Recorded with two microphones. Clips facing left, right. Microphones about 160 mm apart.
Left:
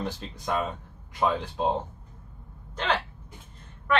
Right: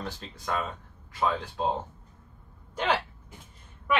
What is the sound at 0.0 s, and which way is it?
Speech, 20° left (ahead or behind).